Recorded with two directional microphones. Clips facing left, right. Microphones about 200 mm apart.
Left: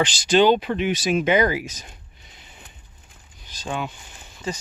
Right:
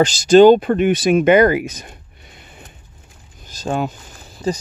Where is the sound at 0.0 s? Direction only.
45° right (ahead or behind).